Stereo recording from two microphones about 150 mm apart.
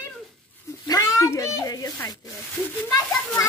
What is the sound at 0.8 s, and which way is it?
A child's voice, 25° left (ahead or behind).